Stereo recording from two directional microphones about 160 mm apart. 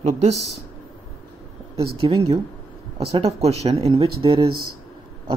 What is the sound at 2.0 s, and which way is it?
Speech, 35° right (ahead or behind).